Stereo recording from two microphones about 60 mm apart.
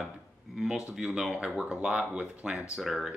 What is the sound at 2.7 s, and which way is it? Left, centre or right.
Speech, centre.